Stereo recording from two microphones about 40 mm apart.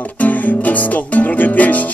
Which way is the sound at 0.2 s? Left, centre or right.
Left.